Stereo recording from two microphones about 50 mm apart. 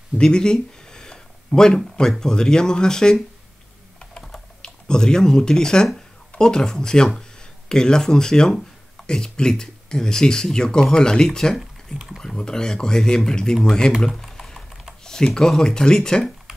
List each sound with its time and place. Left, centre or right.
0.2 s speech: centre
4.0 s typing: centre
6.3 s speech: centre